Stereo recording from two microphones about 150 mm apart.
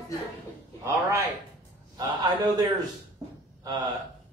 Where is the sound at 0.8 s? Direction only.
20° right (ahead or behind).